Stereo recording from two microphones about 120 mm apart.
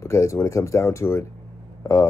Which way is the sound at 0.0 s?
25° left (ahead or behind).